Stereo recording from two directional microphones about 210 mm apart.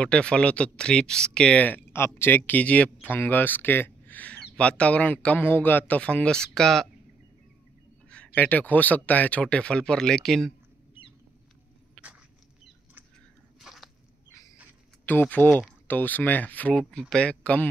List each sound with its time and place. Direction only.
0.0 s speech: 5° left (ahead or behind)
8.4 s speech: 10° left (ahead or behind)
12.0 s a sound: 5° left (ahead or behind)
13.6 s biting: centre (ahead or behind)
15.0 s speech: 10° left (ahead or behind)